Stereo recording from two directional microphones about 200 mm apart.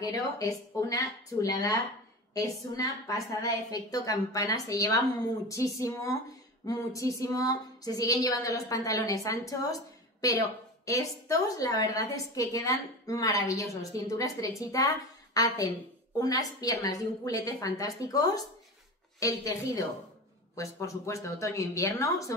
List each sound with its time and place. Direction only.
0.0 s a woman's voice: 15° left (ahead or behind)
10.9 s a woman's voice: 15° left (ahead or behind)